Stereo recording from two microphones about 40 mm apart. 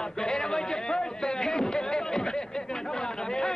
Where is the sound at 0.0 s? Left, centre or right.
Centre.